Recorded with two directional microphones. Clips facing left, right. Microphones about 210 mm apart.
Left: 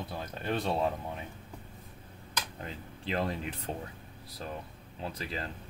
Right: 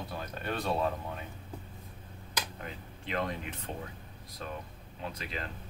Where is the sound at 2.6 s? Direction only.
30° left (ahead or behind).